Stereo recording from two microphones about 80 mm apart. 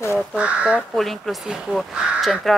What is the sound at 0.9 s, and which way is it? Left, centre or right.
Speech, centre.